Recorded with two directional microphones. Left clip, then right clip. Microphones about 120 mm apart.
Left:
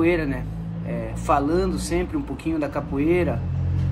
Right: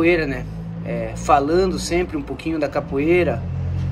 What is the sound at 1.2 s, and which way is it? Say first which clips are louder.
Speech: right 5 dB; 25° left (ahead or behind).